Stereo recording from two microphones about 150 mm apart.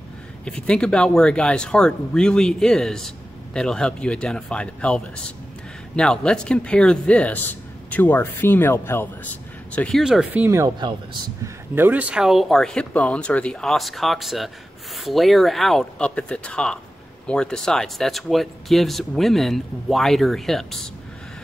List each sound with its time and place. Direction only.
0.5 s speech: 5° left (ahead or behind)
10.4 s speech: 20° right (ahead or behind); by 20.9 s centre (ahead or behind)